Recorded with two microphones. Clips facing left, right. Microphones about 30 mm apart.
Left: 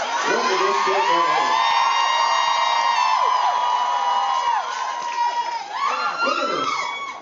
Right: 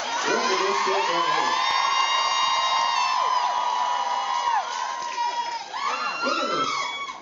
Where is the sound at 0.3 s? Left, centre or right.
Centre.